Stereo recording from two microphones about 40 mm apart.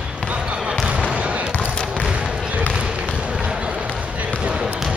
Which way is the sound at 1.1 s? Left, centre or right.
Right.